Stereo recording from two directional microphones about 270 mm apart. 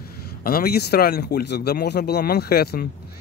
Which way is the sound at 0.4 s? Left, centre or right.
Left.